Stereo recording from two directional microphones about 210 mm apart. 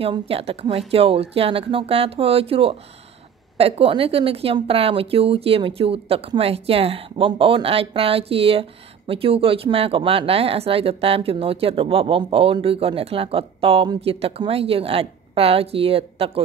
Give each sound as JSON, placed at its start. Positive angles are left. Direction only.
{"t": 0.0, "sound": "speech", "side_deg": -25}